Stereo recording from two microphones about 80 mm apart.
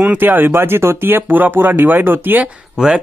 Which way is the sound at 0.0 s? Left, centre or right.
Right.